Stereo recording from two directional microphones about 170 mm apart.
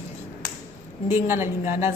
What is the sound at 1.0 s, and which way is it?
Speech, 15° right (ahead or behind).